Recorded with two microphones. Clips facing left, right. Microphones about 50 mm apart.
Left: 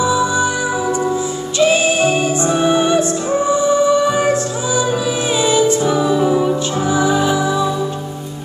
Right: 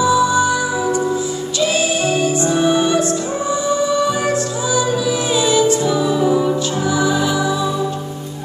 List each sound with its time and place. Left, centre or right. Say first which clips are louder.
0.0 s music: right 1 dB; left
1.6 s music: left 5 dB; left